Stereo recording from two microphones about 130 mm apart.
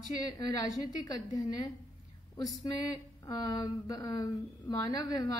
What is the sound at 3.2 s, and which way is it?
A woman's voice, 30° left (ahead or behind).